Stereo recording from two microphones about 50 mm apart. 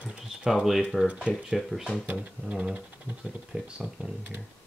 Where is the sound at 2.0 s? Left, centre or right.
Right.